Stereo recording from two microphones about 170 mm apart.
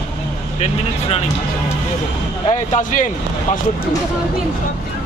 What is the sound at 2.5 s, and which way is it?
Speech, 45° left (ahead or behind).